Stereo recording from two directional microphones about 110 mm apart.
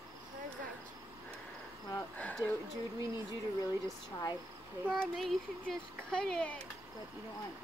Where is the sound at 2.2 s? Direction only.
15° left (ahead or behind).